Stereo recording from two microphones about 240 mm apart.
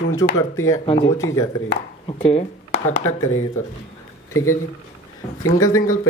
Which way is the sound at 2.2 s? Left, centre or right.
Left.